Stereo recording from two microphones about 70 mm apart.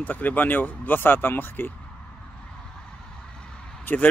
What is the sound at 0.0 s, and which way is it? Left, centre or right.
Speech, left.